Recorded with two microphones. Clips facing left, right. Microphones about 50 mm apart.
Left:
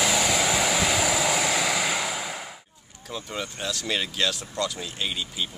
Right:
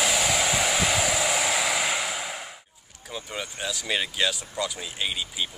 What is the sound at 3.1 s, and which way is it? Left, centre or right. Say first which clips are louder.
Speech: left 1 dB; centre.